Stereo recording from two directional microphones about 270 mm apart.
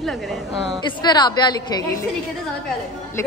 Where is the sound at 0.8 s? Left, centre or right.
Centre.